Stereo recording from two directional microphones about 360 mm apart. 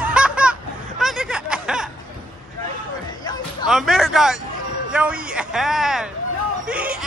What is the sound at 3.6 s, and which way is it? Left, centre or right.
Speech, centre.